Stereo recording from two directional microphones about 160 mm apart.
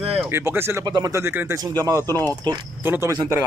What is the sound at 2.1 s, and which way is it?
Speech, 15° left (ahead or behind).